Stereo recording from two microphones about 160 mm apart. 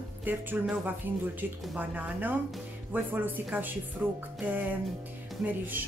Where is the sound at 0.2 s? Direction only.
10° right (ahead or behind).